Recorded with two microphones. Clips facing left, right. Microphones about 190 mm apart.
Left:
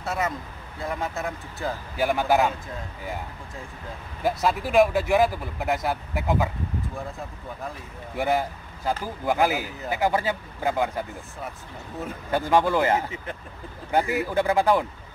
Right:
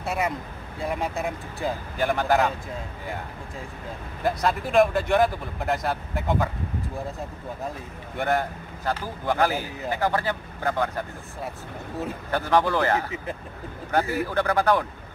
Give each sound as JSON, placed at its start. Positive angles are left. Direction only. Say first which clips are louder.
{"t": 0.0, "sound": "speech", "louder": "right 1 dB", "side_deg": -15}
{"t": 2.0, "sound": "speech", "louder": "left 1 dB", "side_deg": 5}
{"t": 4.2, "sound": "speech", "louder": "left 1 dB", "side_deg": 5}
{"t": 8.2, "sound": "a man's voice", "louder": "left 1 dB", "side_deg": 5}
{"t": 12.3, "sound": "a man's voice", "louder": "left 1 dB", "side_deg": 15}